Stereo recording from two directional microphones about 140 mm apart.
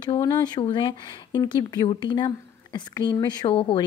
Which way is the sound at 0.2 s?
30° left (ahead or behind).